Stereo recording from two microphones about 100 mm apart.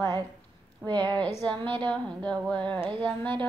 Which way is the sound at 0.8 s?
45° right (ahead or behind).